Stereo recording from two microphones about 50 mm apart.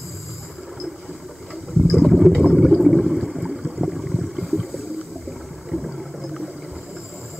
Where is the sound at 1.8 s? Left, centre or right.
Centre.